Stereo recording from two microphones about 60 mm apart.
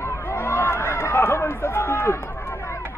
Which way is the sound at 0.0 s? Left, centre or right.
Left.